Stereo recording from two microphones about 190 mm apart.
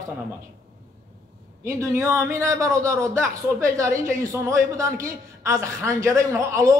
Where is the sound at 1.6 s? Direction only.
15° right (ahead or behind).